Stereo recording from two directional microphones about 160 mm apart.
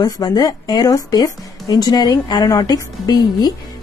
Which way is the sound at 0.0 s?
25° left (ahead or behind).